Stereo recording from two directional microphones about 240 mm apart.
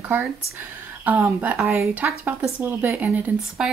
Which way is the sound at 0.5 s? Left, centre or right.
Centre.